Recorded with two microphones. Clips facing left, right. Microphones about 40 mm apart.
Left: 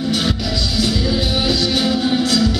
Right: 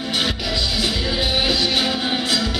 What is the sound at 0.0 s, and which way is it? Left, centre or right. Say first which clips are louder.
Music: left 3 dB; centre.